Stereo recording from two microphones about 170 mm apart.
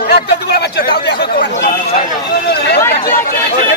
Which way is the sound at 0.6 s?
70° left (ahead or behind).